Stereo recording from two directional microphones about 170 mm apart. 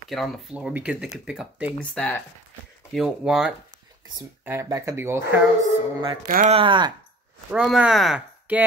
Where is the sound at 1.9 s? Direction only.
10° left (ahead or behind).